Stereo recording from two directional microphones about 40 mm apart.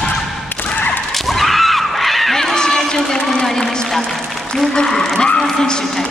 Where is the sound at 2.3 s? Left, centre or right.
Centre.